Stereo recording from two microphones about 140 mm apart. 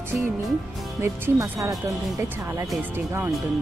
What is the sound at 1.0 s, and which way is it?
Speech, 20° right (ahead or behind).